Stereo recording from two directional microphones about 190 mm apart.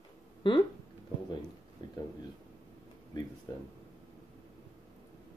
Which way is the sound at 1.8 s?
25° left (ahead or behind).